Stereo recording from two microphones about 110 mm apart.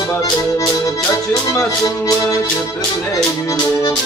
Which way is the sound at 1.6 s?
30° left (ahead or behind).